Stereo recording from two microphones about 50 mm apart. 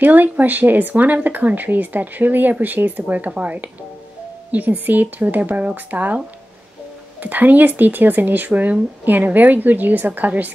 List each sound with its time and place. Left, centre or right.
0.0 s speech: right
7.2 s speech: right